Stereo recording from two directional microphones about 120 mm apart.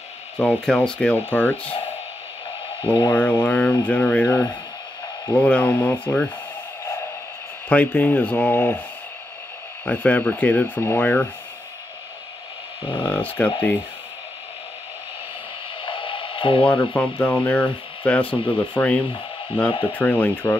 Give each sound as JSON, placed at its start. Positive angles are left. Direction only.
{"t": 0.4, "sound": "speech", "side_deg": 10}
{"t": 2.8, "sound": "speech", "side_deg": 45}
{"t": 3.1, "sound": "speech", "side_deg": 15}
{"t": 7.7, "sound": "speech", "side_deg": 10}
{"t": 9.8, "sound": "speech", "side_deg": 10}
{"t": 13.0, "sound": "speech", "side_deg": 15}
{"t": 15.8, "sound": "radio", "side_deg": 45}
{"t": 16.6, "sound": "speech", "side_deg": 15}